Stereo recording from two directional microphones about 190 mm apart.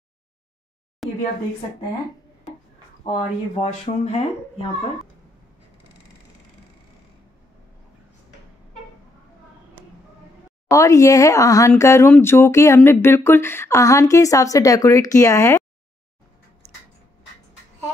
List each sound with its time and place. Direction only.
1.0 s a woman's voice: centre (ahead or behind)
3.1 s speech: 30° left (ahead or behind)
10.7 s speech: 15° left (ahead or behind)